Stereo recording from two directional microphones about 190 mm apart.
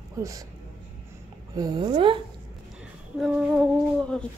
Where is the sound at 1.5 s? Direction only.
20° right (ahead or behind).